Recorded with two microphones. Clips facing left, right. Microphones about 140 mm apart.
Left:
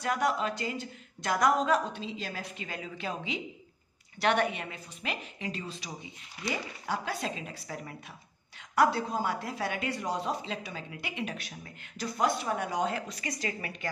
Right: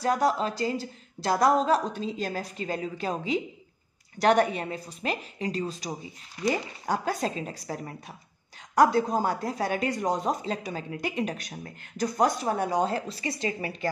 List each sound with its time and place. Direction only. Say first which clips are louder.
0.0 s speech: right 4 dB; 35° right (ahead or behind)